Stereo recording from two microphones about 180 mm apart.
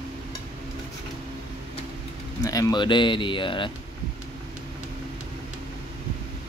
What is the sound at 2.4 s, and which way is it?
Speech, 20° left (ahead or behind).